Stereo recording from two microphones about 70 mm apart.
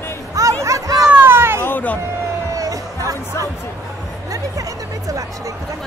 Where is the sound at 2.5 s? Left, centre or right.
Right.